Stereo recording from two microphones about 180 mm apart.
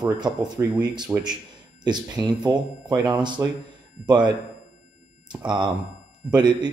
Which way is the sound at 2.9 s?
20° right (ahead or behind).